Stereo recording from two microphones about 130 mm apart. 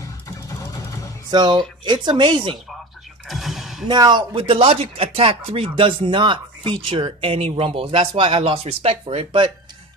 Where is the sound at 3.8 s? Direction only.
35° right (ahead or behind).